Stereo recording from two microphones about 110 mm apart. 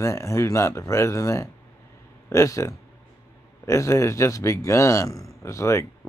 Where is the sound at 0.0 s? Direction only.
25° left (ahead or behind).